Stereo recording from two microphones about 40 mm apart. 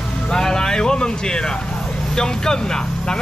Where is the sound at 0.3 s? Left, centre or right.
Centre.